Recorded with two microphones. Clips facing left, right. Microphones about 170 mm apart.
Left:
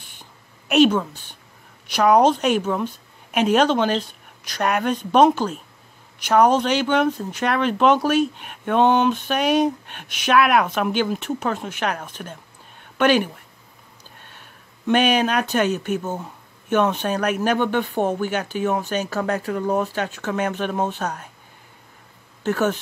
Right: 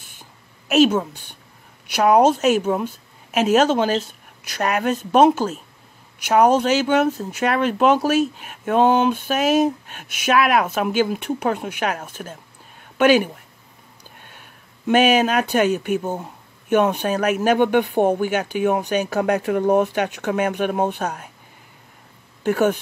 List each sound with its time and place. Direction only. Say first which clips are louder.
0.0 s a sound: even; 45° right (ahead or behind)
0.7 s speech: even; 5° right (ahead or behind)
14.9 s speech: right 2 dB; 5° right (ahead or behind)
22.4 s speech: right 3 dB; 10° right (ahead or behind)